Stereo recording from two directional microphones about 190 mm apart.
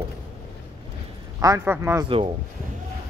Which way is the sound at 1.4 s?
15° right (ahead or behind).